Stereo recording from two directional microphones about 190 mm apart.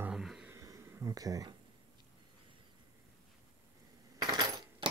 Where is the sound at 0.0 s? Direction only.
Centre (ahead or behind).